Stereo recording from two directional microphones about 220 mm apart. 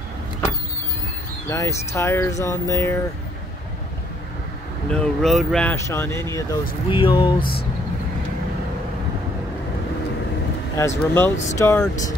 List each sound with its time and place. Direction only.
1.5 s speech: 15° left (ahead or behind)
4.9 s speech: 5° left (ahead or behind); by 7.4 s 20° left (ahead or behind)
10.8 s speech: 10° left (ahead or behind)